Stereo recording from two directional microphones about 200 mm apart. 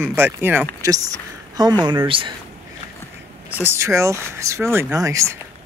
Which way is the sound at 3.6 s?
15° right (ahead or behind).